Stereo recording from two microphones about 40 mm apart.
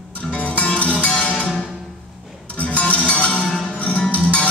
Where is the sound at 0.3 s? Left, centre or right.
Left.